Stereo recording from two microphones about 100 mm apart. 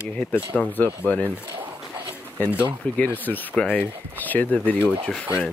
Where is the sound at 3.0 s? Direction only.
15° left (ahead or behind).